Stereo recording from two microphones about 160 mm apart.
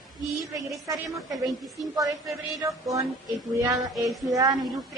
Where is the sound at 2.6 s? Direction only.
20° right (ahead or behind).